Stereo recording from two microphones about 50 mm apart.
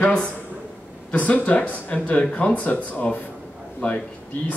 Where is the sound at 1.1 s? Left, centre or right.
Left.